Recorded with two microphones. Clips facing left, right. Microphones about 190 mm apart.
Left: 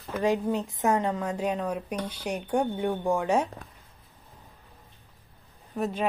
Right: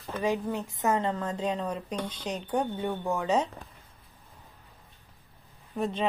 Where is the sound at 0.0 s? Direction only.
10° left (ahead or behind).